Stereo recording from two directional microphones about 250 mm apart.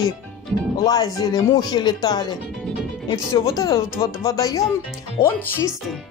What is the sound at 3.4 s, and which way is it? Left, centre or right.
Speech, centre.